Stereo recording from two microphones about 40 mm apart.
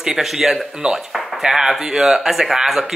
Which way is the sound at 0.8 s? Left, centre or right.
Right.